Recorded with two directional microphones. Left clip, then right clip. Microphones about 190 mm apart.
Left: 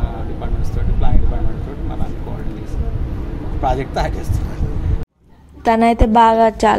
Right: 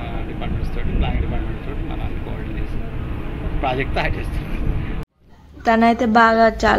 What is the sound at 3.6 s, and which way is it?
Speech, 15° left (ahead or behind).